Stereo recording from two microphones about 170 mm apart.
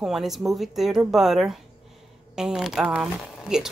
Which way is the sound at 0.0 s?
Centre (ahead or behind).